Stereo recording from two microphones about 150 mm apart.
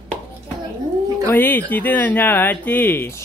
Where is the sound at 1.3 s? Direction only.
15° left (ahead or behind).